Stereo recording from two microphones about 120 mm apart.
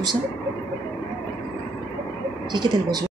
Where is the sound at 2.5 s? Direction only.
40° right (ahead or behind).